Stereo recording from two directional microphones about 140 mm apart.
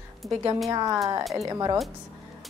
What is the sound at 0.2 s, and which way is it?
Speech, centre (ahead or behind).